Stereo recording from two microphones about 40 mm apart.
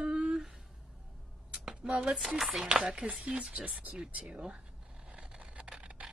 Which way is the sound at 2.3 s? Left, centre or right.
Centre.